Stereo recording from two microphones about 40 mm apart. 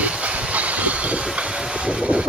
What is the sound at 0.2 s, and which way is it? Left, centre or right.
Train, right.